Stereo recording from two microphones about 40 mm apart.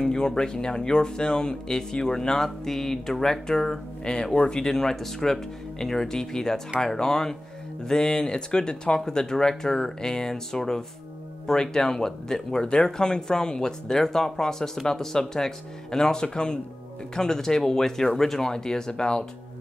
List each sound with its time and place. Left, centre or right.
0.0 s speech: centre